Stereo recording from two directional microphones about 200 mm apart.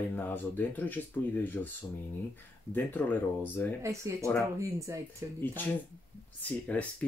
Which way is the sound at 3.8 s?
15° right (ahead or behind).